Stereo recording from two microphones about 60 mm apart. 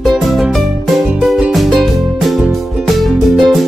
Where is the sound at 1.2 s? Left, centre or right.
Centre.